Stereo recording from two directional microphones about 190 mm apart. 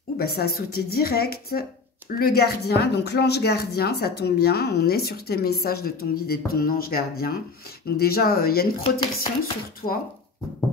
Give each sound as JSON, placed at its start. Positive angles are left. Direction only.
{"t": 0.2, "sound": "speech", "side_deg": 55}
{"t": 8.8, "sound": "chopping", "side_deg": 30}
{"t": 9.8, "sound": "speech", "side_deg": 35}